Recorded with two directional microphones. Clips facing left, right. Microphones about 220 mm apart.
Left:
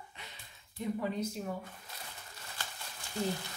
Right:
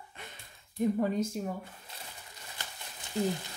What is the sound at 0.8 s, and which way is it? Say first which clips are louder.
Speech: right 8 dB; 45° right (ahead or behind).